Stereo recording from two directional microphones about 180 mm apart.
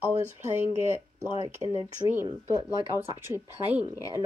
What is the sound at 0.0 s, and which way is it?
Speech, 10° right (ahead or behind).